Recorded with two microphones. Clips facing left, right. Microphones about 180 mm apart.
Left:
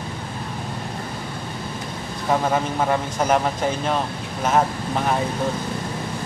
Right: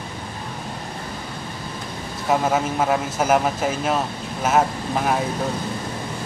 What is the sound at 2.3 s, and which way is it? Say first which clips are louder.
A man's voice: right 1 dB; 5° right (ahead or behind).